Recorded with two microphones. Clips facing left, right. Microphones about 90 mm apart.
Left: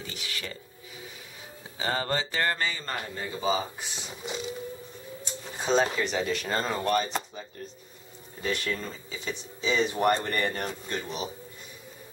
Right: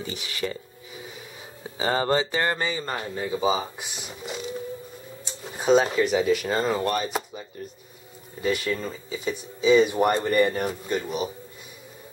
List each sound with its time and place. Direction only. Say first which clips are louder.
0.0 s speech: right 7 dB; 20° right (ahead or behind)
1.8 s speech: right 6 dB; 20° right (ahead or behind)
5.2 s speech: right 7 dB; 5° right (ahead or behind)